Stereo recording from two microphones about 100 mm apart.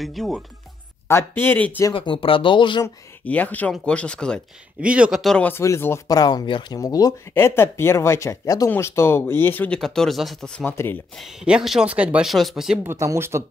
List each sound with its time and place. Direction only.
0.0 s speech: centre (ahead or behind)
1.0 s speech: 25° left (ahead or behind)
2.0 s speech: 65° left (ahead or behind)
3.3 s speech: 15° left (ahead or behind)
4.8 s speech: 10° right (ahead or behind)
5.6 s speech: 25° left (ahead or behind)
6.0 s speech: 40° left (ahead or behind)
6.8 s speech: 40° left (ahead or behind)
7.3 s speech: 25° left (ahead or behind)
9.8 s speech: 5° left (ahead or behind)
11.1 s speech: 5° right (ahead or behind)
12.3 s speech: centre (ahead or behind)
12.8 s speech: 30° right (ahead or behind)